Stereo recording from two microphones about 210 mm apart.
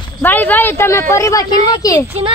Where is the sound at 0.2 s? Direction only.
10° left (ahead or behind).